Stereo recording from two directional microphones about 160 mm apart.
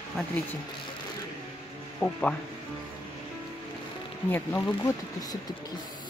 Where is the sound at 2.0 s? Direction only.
15° left (ahead or behind).